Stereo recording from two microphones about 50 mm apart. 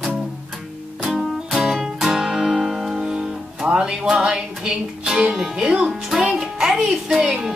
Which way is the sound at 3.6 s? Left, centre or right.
Right.